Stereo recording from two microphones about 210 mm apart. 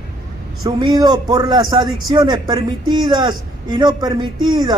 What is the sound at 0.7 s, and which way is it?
A man's voice, 20° right (ahead or behind).